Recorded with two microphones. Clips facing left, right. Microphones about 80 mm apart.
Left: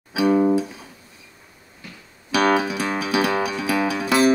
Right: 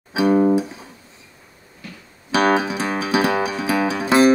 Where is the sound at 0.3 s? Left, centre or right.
Right.